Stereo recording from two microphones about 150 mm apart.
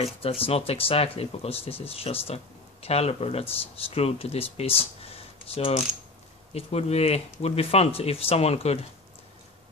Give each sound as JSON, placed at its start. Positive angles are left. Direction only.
{"t": 0.0, "sound": "speech", "side_deg": 40}